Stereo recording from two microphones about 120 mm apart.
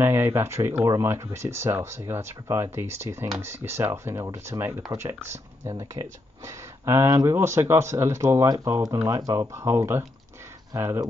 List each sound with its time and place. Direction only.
0.0 s speech: 20° right (ahead or behind)